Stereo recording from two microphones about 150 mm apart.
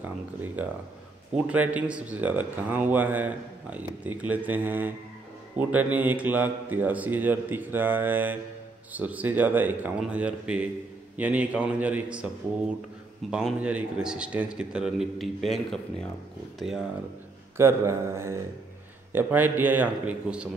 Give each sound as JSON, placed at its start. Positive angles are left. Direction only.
{"t": 0.0, "sound": "speech", "side_deg": -10}
{"t": 13.3, "sound": "a man's voice", "side_deg": -5}
{"t": 17.6, "sound": "speech", "side_deg": -20}